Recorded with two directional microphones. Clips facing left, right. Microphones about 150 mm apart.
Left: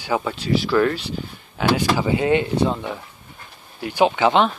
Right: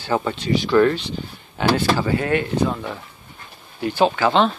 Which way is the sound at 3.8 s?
15° left (ahead or behind).